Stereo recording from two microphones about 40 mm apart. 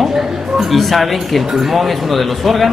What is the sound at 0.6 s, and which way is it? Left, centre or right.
Speech, centre.